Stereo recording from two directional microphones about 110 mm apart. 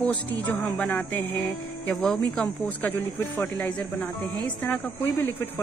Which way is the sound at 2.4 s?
15° left (ahead or behind).